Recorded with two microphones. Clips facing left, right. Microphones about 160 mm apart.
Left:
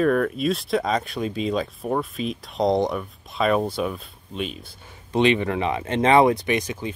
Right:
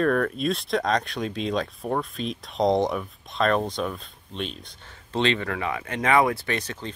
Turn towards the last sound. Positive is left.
turn(degrees=10)  # may be behind; listen again after turning